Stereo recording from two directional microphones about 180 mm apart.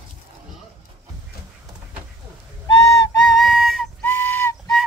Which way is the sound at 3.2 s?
Centre (ahead or behind).